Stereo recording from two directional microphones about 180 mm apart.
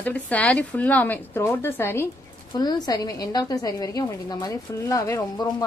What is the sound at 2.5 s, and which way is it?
A woman's voice, 20° left (ahead or behind).